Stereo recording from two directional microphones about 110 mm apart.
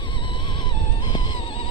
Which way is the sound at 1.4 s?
60° left (ahead or behind).